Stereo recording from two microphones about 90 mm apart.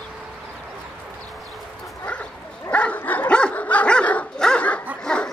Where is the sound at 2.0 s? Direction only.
15° left (ahead or behind).